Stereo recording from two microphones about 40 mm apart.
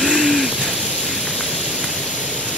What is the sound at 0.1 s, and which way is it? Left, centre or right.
Hoot, centre.